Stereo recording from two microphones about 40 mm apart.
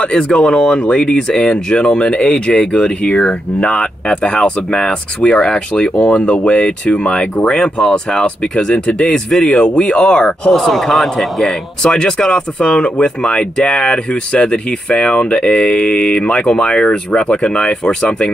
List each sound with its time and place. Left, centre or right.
0.0 s speech: left
10.5 s a man's voice: centre
11.8 s speech: centre